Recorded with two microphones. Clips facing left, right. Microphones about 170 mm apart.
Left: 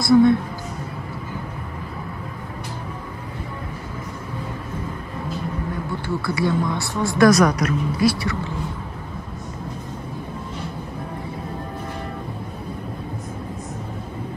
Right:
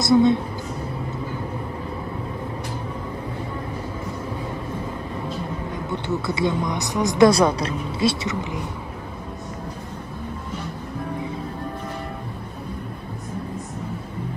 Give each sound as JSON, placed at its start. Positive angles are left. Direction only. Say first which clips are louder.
{"t": 0.0, "sound": "speech", "louder": "left 2 dB", "side_deg": -20}
{"t": 5.9, "sound": "speech", "louder": "right 3 dB", "side_deg": -20}
{"t": 7.2, "sound": "speech", "louder": "left 3 dB", "side_deg": -30}